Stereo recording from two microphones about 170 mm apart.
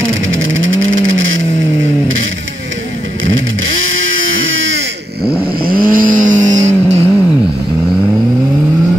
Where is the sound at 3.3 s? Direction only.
90° right.